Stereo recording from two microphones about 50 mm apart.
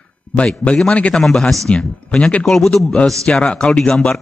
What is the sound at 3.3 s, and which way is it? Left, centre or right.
Speech, centre.